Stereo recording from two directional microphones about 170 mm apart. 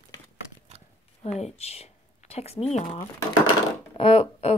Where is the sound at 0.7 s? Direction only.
35° right (ahead or behind).